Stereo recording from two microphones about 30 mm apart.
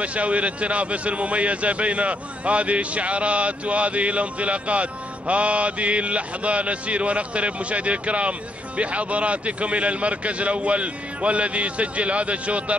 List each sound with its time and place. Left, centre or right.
0.0 s speech: right